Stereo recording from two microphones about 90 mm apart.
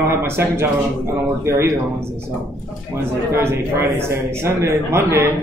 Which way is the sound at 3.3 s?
25° right (ahead or behind).